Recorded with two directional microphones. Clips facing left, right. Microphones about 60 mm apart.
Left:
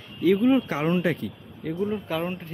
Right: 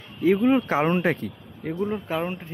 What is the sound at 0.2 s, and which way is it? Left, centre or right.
Speech, right.